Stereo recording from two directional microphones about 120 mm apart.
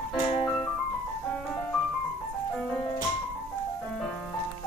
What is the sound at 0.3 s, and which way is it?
Music, 45° left (ahead or behind).